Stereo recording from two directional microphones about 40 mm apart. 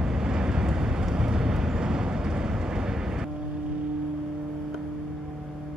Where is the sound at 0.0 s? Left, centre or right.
Centre.